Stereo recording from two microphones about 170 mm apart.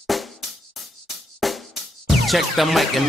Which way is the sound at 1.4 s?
Centre (ahead or behind).